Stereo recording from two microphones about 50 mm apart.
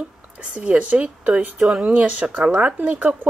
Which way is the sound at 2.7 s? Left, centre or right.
Right.